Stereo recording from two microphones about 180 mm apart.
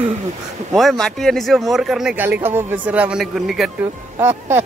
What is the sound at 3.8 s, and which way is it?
Speech, 15° right (ahead or behind).